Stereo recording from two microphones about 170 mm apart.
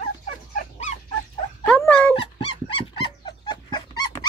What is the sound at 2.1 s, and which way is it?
Dog, 30° left (ahead or behind).